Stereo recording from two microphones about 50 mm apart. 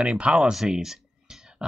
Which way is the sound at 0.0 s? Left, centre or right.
Right.